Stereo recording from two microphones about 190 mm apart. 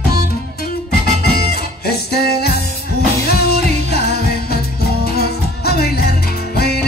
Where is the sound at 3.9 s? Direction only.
55° left (ahead or behind).